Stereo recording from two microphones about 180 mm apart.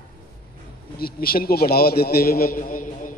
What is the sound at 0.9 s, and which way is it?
A man's voice, 55° left (ahead or behind).